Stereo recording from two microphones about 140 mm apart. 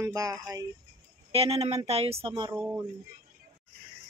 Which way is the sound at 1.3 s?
45° right (ahead or behind).